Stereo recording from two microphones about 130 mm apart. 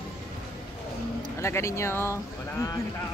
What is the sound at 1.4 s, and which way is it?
Speech, 20° left (ahead or behind).